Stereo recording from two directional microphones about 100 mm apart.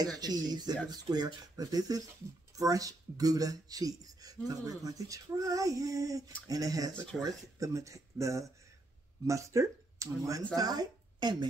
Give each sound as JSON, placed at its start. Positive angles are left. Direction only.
{"t": 0.2, "sound": "speech", "side_deg": -40}